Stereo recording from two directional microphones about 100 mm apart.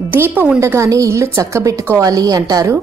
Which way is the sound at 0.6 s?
30° right (ahead or behind).